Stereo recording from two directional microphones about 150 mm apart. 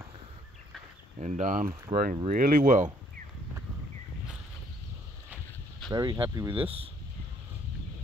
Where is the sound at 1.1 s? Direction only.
55° right (ahead or behind).